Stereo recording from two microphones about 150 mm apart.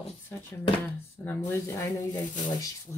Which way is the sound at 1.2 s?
10° left (ahead or behind).